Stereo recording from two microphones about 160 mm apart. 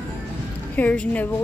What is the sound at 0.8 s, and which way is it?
Speech, 10° left (ahead or behind).